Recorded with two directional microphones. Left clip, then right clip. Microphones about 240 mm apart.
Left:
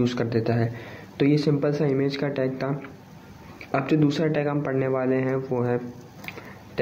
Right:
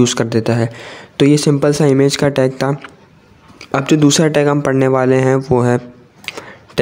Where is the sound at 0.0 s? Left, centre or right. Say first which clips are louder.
Right 10 dB; right.